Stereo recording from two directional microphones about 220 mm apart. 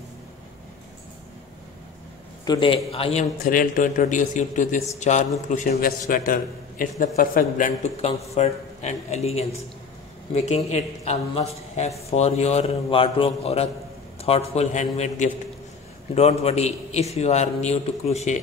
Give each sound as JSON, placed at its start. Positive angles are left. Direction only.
{"t": 2.4, "sound": "a man's voice", "side_deg": 20}